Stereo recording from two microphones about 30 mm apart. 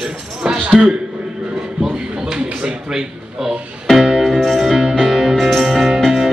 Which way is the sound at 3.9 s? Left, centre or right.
Centre.